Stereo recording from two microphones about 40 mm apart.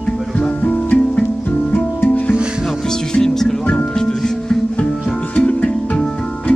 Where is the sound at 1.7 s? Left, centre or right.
Left.